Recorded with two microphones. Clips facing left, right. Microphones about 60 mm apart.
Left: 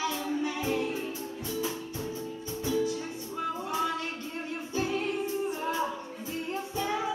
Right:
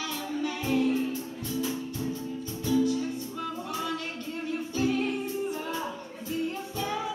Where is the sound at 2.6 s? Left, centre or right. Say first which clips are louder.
Right 4 dB; centre.